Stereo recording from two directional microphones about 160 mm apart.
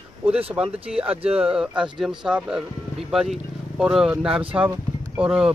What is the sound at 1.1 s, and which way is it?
Speech, 35° right (ahead or behind).